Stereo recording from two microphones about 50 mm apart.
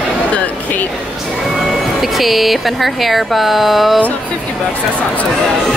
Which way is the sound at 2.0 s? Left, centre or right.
Centre.